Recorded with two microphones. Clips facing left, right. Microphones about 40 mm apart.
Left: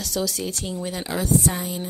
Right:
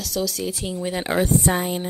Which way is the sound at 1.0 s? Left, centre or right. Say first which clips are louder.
Right 2 dB; right.